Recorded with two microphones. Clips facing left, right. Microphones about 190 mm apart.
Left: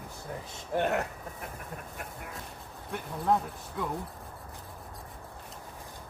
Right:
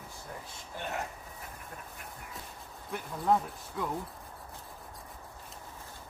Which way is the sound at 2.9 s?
Centre (ahead or behind).